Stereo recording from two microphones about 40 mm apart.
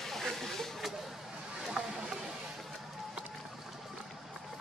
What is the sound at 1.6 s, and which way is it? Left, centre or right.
Boat, centre.